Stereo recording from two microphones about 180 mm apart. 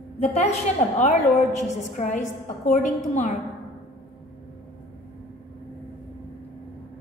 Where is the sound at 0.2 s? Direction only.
35° left (ahead or behind).